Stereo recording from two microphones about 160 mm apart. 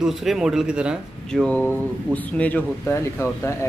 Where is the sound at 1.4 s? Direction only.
5° left (ahead or behind).